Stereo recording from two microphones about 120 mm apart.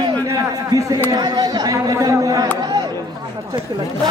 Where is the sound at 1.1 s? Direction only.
35° right (ahead or behind).